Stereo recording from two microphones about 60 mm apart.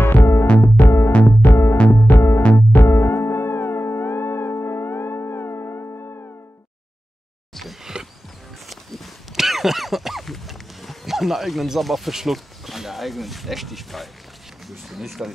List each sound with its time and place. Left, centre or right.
0.0 s music: left
7.5 s a sound: centre
14.7 s speech: centre